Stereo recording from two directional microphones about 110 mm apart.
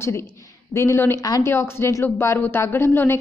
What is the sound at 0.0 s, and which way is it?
A woman's voice, 25° left (ahead or behind).